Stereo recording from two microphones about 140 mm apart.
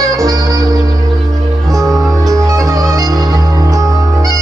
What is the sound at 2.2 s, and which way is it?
Music, 25° right (ahead or behind).